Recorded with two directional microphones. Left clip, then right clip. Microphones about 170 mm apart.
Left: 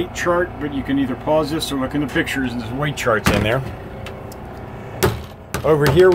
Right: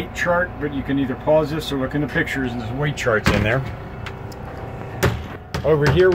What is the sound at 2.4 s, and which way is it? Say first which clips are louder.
Speech: left 1 dB; 10° left (ahead or behind).